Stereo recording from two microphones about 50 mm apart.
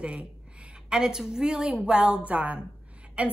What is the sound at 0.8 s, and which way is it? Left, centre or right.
A woman's voice, centre.